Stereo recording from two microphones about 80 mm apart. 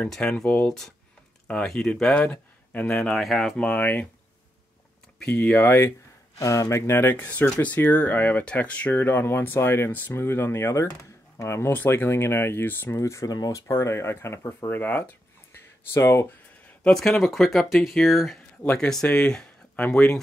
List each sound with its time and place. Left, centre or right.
0.1 s speech: centre
3.1 s speech: centre
3.5 s speech: centre
5.3 s speech: centre
6.4 s speech: left
13.0 s speech: left
15.5 s a sound: left
17.2 s speech: centre
18.6 s speech: centre